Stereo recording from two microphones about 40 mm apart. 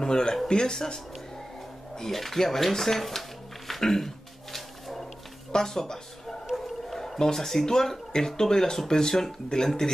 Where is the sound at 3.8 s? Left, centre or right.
Centre.